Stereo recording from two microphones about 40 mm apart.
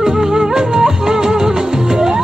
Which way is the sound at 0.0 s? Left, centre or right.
Centre.